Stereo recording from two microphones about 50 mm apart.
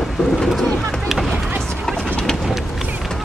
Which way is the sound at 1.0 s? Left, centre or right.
Centre.